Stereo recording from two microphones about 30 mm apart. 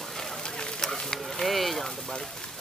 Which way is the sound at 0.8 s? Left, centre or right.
Centre.